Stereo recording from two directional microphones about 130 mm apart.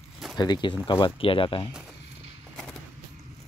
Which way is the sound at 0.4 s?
35° left (ahead or behind).